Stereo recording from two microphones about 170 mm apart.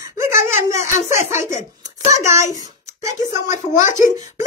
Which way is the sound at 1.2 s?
45° left (ahead or behind).